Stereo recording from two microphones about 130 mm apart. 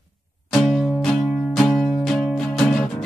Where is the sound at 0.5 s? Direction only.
Centre (ahead or behind).